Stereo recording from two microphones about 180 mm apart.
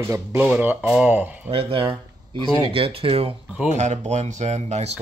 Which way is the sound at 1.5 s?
30° right (ahead or behind).